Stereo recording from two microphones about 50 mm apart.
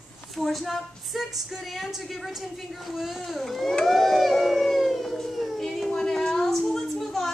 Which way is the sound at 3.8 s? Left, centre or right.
Centre.